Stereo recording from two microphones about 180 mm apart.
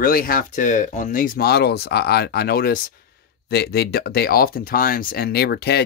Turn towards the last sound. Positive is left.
turn(degrees=65)  # may be behind; listen again after turning